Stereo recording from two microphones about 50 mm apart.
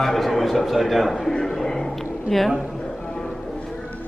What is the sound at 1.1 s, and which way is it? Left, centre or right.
A man's voice, centre.